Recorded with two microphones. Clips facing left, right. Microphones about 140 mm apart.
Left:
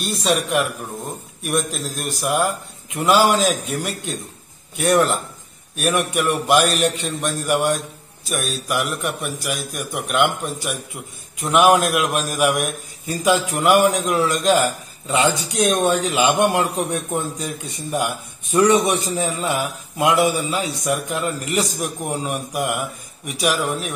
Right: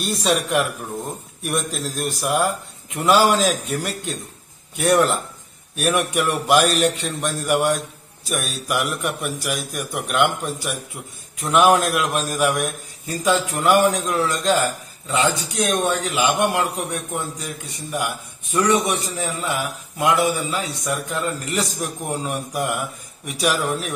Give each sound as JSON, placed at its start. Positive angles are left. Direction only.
{"t": 0.0, "sound": "a man's voice", "side_deg": 0}
{"t": 18.5, "sound": "a man's voice", "side_deg": 25}